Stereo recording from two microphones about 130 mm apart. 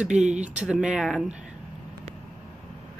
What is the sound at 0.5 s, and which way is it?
Speech, 10° right (ahead or behind).